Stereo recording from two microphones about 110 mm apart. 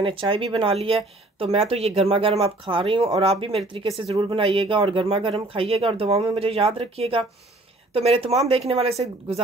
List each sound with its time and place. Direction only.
0.0 s speech: 50° right (ahead or behind); by 9.4 s 70° right (ahead or behind)